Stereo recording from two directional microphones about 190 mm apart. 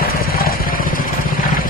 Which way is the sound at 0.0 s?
50° left (ahead or behind).